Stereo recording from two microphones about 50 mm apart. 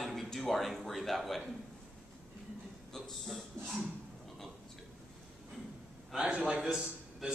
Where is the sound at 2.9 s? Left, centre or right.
Centre.